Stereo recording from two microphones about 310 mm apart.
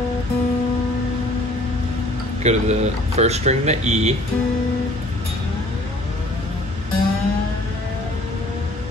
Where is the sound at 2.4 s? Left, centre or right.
Right.